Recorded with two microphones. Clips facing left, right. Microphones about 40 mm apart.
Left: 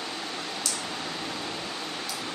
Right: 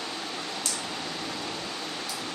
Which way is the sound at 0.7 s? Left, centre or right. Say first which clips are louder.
Even; centre.